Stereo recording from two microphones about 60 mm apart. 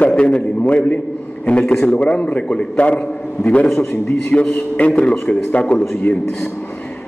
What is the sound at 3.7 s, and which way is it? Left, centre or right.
Speech, left.